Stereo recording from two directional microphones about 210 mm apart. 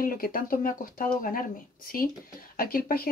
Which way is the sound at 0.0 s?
40° left (ahead or behind).